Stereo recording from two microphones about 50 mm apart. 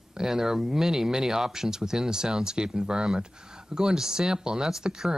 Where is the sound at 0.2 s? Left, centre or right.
Centre.